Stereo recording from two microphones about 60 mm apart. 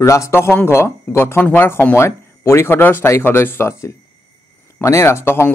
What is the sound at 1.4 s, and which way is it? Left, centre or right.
Speech, left.